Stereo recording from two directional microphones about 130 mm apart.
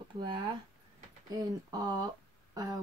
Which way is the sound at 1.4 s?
30° right (ahead or behind).